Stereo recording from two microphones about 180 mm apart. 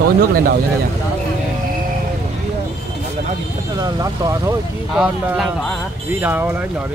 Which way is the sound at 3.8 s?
20° right (ahead or behind).